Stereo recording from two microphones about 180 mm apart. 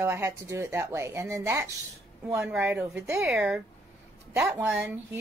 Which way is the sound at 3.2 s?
5° right (ahead or behind).